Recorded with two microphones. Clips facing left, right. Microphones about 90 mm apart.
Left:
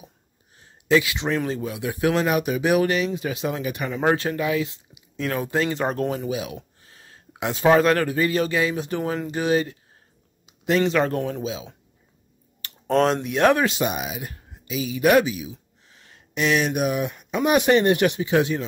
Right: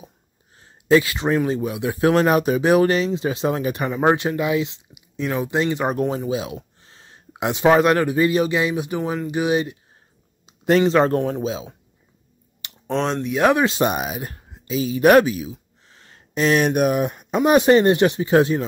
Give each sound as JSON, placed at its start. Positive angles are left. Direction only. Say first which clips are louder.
{"t": 0.6, "sound": "a sound", "louder": "right 3 dB", "side_deg": -35}
{"t": 1.5, "sound": "speech", "louder": "right 4 dB", "side_deg": -25}
{"t": 3.9, "sound": "speech", "louder": "right 3 dB", "side_deg": -20}
{"t": 6.0, "sound": "speech", "louder": "right 3 dB", "side_deg": -30}
{"t": 10.4, "sound": "a sound", "louder": "right 5 dB", "side_deg": -40}
{"t": 10.9, "sound": "speech", "louder": "right 5 dB", "side_deg": -35}
{"t": 12.8, "sound": "speech", "louder": "left 3 dB", "side_deg": 0}
{"t": 13.4, "sound": "speech", "louder": "right 1 dB", "side_deg": -15}
{"t": 13.7, "sound": "speech", "louder": "right 4 dB", "side_deg": -45}
{"t": 15.0, "sound": "speech", "louder": "right 4 dB", "side_deg": -50}